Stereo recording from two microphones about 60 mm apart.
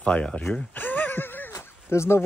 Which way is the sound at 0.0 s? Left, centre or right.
Centre.